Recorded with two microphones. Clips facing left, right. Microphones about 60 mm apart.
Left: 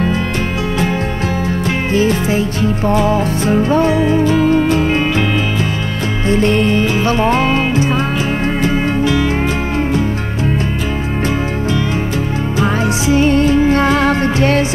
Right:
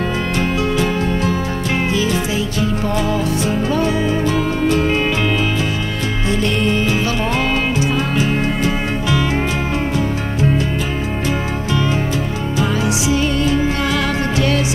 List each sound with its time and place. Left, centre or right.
1.9 s music: left
6.2 s music: left
12.8 s music: left